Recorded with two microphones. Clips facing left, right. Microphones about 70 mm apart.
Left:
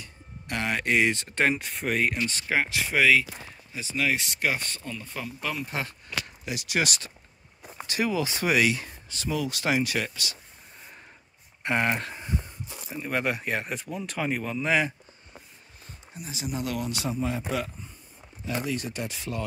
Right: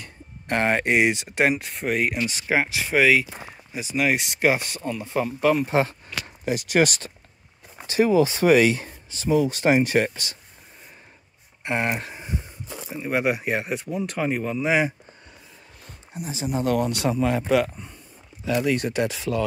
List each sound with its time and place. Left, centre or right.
0.0 s a sound: right
0.8 s speech: centre
1.6 s speech: centre; by 5.2 s right
5.2 s speech: right
5.7 s speech: right
6.4 s speech: right
11.6 s speech: centre
12.6 s a sound: right
12.9 s speech: centre
16.4 s speech: right
17.1 s speech: right
18.4 s speech: right